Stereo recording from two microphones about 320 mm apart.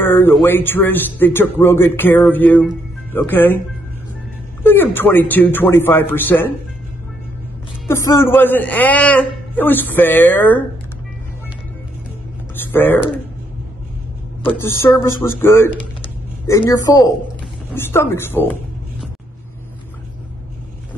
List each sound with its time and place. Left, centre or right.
0.0 s speech: centre
4.6 s speech: centre
7.8 s a man's voice: centre
12.5 s speech: centre
14.4 s speech: centre
14.8 s speech: centre